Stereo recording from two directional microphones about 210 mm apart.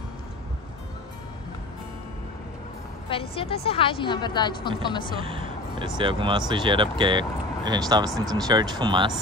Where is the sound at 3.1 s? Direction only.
25° left (ahead or behind).